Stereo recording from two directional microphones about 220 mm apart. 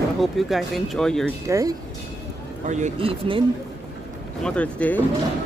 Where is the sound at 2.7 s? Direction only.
35° right (ahead or behind).